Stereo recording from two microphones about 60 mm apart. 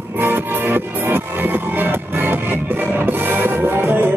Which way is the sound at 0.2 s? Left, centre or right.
Right.